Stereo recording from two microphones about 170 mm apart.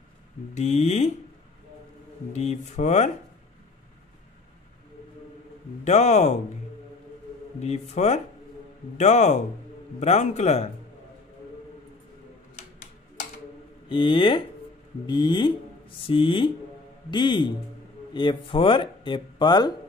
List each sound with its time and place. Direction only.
0.6 s a man's voice: 40° left (ahead or behind)
2.3 s speech: 40° left (ahead or behind)
5.9 s a man's voice: 40° left (ahead or behind)
7.6 s a man's voice: 40° left (ahead or behind)
13.8 s speech: 30° left (ahead or behind)